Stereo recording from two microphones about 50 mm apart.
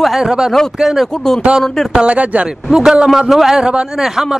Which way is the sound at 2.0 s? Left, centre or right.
Right.